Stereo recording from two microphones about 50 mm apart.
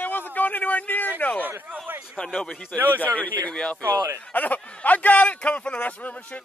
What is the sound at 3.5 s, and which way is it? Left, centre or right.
Speech, centre.